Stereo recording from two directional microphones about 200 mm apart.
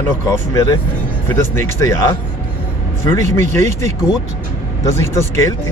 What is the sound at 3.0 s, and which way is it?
Speech, 15° left (ahead or behind).